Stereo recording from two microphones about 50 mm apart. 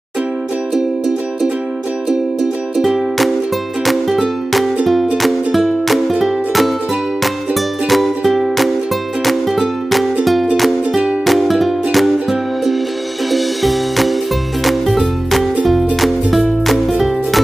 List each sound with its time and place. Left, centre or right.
2.8 s music: centre
7.9 s music: centre